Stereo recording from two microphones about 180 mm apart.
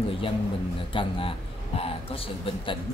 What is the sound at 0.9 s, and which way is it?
Speech, 30° left (ahead or behind).